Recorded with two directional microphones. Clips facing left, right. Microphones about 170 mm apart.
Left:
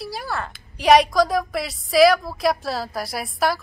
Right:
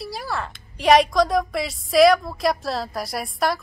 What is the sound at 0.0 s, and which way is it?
A woman's voice, centre (ahead or behind).